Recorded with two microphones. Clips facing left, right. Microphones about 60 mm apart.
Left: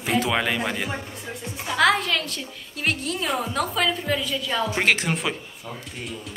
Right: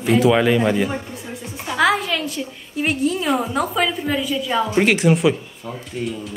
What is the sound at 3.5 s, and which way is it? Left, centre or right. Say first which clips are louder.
A woman's voice: right 4 dB; centre.